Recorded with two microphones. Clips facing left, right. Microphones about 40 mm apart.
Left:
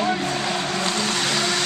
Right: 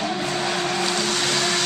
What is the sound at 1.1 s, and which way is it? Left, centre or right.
Blender, centre.